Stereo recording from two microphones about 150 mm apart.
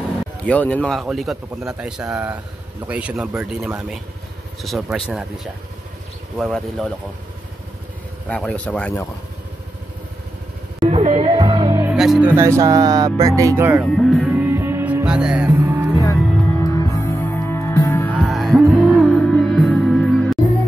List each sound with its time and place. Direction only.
0.5 s speech: 10° left (ahead or behind)
8.3 s speech: 5° left (ahead or behind)
10.9 s music: 45° right (ahead or behind)
11.8 s speech: 5° right (ahead or behind)
13.8 s music: centre (ahead or behind)
14.4 s music: 15° right (ahead or behind)
16.2 s music: 10° left (ahead or behind)
16.6 s music: 20° left (ahead or behind)
18.2 s music: centre (ahead or behind)